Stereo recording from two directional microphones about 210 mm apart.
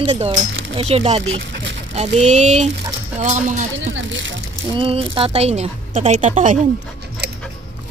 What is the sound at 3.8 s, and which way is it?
Speech, 60° right (ahead or behind).